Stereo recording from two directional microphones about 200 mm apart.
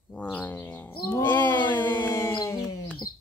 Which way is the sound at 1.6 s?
20° left (ahead or behind).